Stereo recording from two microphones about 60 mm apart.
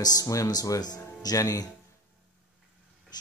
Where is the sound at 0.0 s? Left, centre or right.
Left.